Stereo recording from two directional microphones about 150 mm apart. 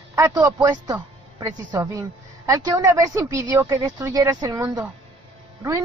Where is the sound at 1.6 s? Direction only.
25° right (ahead or behind).